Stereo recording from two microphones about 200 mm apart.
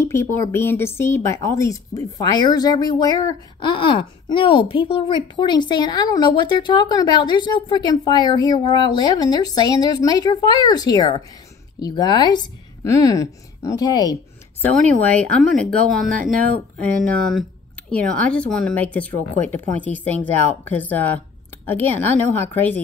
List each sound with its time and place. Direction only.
0.0 s speech: 15° left (ahead or behind)
14.6 s speech: 5° left (ahead or behind)
22.3 s speech: 10° left (ahead or behind)